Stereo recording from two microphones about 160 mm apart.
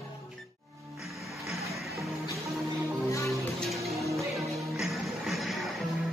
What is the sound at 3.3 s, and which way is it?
Music, centre (ahead or behind).